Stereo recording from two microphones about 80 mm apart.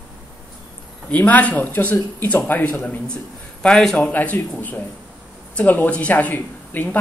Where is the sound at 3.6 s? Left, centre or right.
Centre.